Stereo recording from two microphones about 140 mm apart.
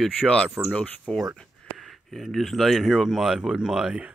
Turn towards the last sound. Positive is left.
turn(degrees=-5)  # may be behind; listen again after turning